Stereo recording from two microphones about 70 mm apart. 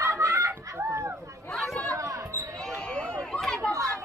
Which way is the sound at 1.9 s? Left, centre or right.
Right.